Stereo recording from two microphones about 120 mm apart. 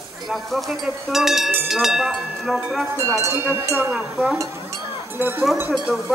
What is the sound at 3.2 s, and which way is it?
Speech, 20° right (ahead or behind).